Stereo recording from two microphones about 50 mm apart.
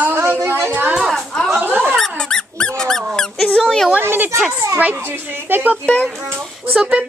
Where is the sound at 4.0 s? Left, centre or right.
Right.